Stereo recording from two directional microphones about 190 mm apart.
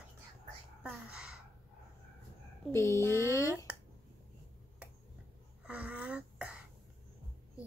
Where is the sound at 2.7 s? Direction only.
15° left (ahead or behind).